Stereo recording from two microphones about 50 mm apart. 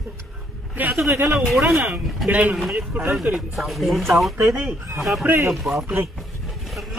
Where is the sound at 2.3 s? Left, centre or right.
Right.